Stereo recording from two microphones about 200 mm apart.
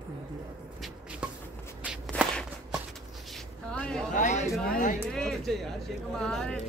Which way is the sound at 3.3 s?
5° left (ahead or behind).